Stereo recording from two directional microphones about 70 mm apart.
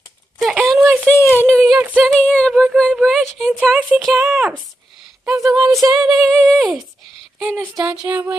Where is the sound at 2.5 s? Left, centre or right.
Centre.